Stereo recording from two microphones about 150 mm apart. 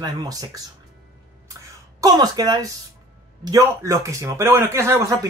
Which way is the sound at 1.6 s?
25° right (ahead or behind).